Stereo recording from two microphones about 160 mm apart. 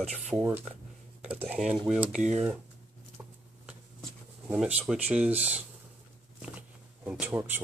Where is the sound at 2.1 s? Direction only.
45° right (ahead or behind).